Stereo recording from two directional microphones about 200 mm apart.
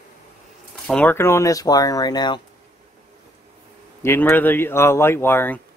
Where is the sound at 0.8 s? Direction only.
10° left (ahead or behind).